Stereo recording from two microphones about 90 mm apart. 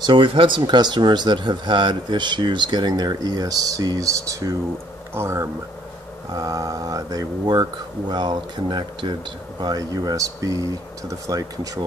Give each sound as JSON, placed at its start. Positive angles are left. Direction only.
{"t": 0.0, "sound": "speech", "side_deg": -65}
{"t": 6.3, "sound": "speech", "side_deg": -45}